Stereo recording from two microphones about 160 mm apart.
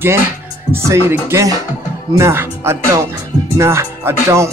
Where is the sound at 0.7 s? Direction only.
15° right (ahead or behind).